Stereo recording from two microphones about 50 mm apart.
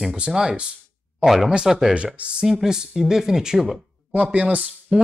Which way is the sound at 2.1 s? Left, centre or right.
Right.